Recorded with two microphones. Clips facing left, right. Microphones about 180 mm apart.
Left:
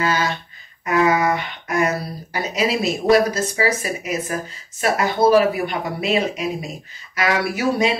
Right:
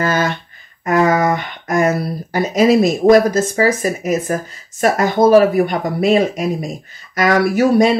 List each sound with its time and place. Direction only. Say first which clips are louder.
0.0 s speech: right 4 dB; 50° right (ahead or behind)